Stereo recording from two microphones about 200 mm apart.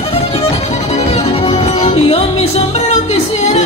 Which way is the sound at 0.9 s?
30° left (ahead or behind).